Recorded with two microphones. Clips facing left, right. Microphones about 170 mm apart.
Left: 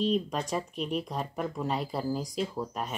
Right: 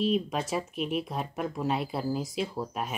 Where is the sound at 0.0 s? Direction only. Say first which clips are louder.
Right 1 dB; 5° right (ahead or behind).